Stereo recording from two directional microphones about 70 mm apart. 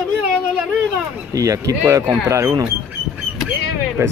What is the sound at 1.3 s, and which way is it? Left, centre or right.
Speech, right.